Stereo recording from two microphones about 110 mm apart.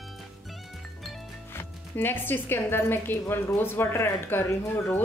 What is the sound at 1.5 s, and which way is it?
Speech, 20° left (ahead or behind).